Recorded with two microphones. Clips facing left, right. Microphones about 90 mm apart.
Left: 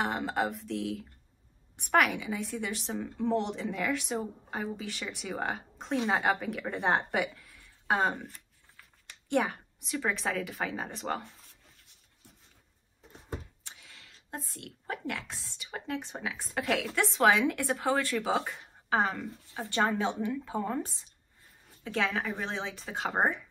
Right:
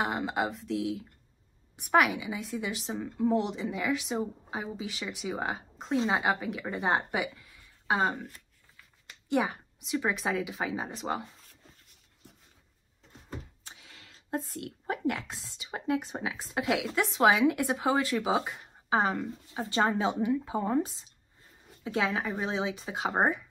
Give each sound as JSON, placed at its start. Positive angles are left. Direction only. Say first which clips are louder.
{"t": 0.0, "sound": "speech", "louder": "even", "side_deg": -5}
{"t": 9.3, "sound": "speech", "louder": "even", "side_deg": -10}
{"t": 13.7, "sound": "a sound", "louder": "right 1 dB", "side_deg": -30}
{"t": 15.3, "sound": "speech", "louder": "right 2 dB", "side_deg": -15}